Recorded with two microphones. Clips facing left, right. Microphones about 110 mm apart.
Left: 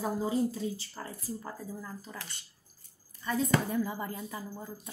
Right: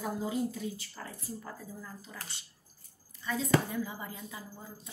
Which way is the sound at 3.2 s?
45° left (ahead or behind).